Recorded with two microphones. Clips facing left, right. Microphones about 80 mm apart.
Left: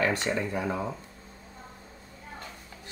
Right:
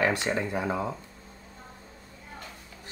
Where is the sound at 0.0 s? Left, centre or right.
Centre.